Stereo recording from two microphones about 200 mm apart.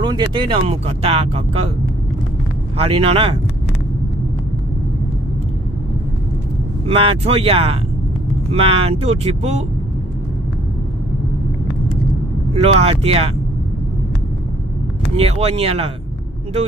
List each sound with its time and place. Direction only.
0.0 s speech: 20° right (ahead or behind)
2.8 s speech: 30° right (ahead or behind)
6.9 s speech: 30° right (ahead or behind)
12.6 s speech: 30° right (ahead or behind)
15.1 s speech: 30° right (ahead or behind)